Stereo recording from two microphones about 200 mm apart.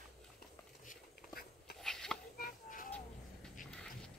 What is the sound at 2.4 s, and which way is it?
Music, 45° left (ahead or behind).